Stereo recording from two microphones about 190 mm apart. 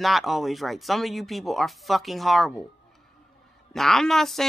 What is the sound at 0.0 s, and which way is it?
Speech, centre (ahead or behind).